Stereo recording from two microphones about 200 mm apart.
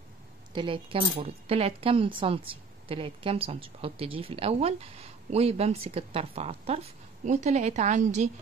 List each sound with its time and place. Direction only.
0.5 s speech: 25° right (ahead or behind)